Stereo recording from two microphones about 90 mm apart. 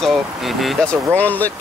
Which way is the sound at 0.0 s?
Centre (ahead or behind).